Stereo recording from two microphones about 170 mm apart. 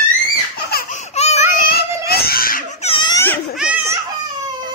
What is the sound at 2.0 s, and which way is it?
Screaming, 65° left (ahead or behind).